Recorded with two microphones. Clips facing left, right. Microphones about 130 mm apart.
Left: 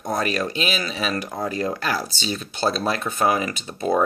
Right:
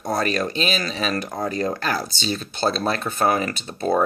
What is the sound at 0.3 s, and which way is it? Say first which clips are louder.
Speech: right 1 dB; 5° left (ahead or behind).